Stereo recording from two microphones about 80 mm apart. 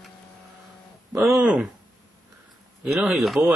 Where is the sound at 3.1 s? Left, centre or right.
Centre.